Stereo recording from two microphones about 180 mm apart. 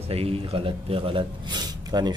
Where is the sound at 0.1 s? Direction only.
35° right (ahead or behind).